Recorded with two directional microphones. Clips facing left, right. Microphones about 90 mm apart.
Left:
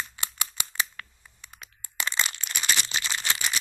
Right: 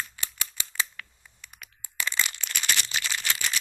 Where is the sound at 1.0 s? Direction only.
25° left (ahead or behind).